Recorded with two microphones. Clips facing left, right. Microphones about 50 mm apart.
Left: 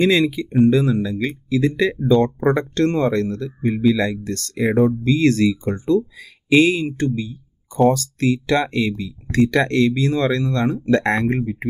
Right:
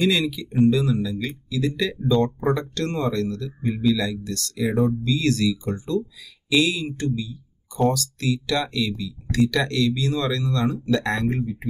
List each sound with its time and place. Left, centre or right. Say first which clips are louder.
0.0 s speech: left 5 dB; left
7.2 s a sound: left 4 dB; left
7.9 s speech: left 6 dB; left